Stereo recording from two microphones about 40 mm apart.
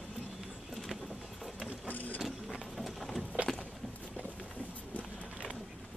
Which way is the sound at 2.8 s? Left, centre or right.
Centre.